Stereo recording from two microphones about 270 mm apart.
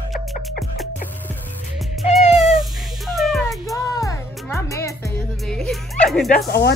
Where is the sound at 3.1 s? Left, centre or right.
Centre.